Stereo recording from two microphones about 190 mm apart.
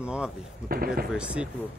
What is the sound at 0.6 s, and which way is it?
Speech, 50° right (ahead or behind).